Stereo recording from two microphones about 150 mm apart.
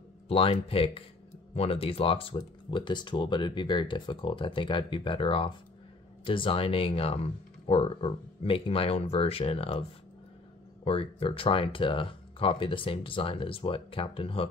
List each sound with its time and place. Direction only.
0.3 s speech: 40° left (ahead or behind)